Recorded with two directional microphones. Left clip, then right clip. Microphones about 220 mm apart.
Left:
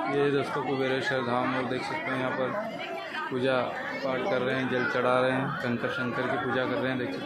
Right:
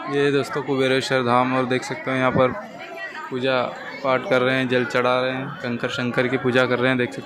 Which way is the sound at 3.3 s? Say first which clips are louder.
Right 6 dB; 20° right (ahead or behind).